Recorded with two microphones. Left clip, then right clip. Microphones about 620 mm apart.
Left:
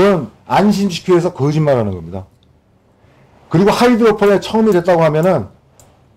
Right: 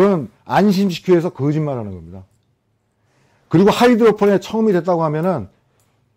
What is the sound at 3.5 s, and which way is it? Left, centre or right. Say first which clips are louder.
A man's voice: left 1 dB; right.